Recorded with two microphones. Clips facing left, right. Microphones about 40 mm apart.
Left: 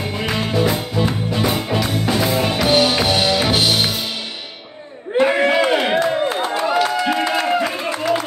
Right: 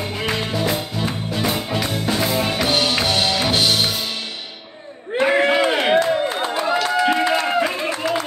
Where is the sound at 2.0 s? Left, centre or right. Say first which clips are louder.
Left 1 dB; centre.